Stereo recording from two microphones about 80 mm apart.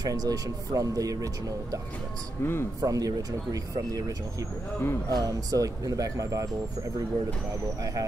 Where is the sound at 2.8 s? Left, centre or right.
Right.